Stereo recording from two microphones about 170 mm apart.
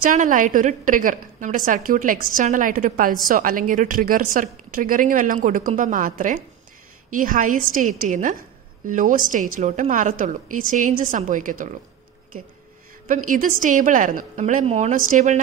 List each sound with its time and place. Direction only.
0.0 s a woman's voice: 50° right (ahead or behind)
13.1 s a woman's voice: 50° right (ahead or behind)